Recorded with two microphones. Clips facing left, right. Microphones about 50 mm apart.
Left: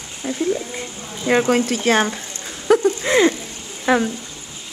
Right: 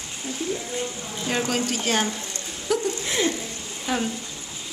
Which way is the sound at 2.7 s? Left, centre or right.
Left.